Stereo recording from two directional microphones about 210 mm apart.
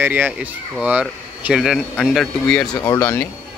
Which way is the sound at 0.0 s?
10° right (ahead or behind).